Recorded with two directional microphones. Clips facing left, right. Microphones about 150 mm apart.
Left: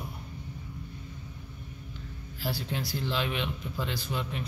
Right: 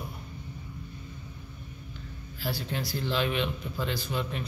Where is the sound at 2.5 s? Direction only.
25° left (ahead or behind).